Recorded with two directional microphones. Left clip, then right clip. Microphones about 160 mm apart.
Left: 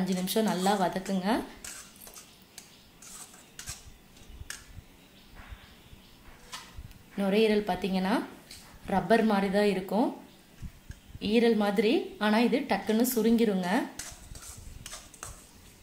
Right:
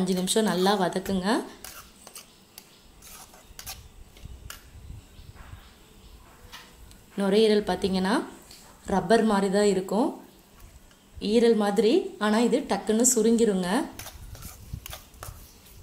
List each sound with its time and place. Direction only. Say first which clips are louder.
0.0 s a woman's voice: right 4 dB; 20° right (ahead or behind)
7.2 s a woman's voice: right 4 dB; 15° right (ahead or behind)
11.1 s a woman's voice: right 4 dB; 15° right (ahead or behind)